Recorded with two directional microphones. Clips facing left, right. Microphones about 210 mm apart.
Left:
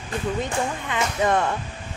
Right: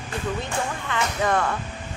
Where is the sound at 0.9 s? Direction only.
20° left (ahead or behind).